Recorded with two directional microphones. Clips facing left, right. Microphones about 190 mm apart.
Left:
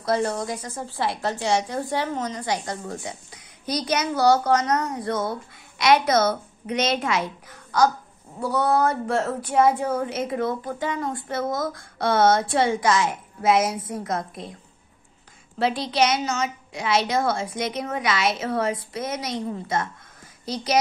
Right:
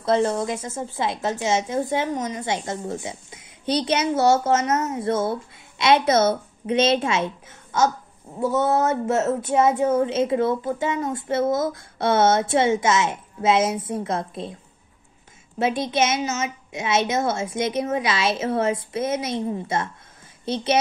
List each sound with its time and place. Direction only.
0.0 s a woman's voice: 25° right (ahead or behind)
15.6 s a woman's voice: 20° right (ahead or behind)